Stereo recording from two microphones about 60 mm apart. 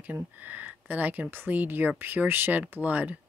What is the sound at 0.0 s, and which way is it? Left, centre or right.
Speech, right.